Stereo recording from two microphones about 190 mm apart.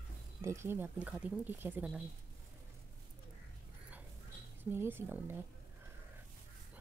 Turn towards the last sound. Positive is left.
turn(degrees=-10)  # may be behind; listen again after turning